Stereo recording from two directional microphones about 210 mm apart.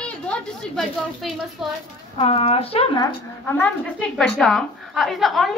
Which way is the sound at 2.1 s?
30° left (ahead or behind).